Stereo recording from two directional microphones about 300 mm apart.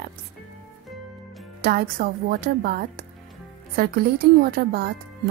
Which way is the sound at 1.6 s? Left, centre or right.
Right.